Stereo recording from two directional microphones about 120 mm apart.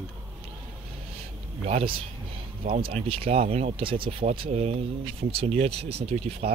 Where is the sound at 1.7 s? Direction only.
55° right (ahead or behind).